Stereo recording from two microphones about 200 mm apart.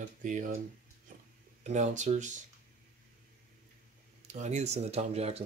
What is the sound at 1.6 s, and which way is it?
Speech, 35° right (ahead or behind).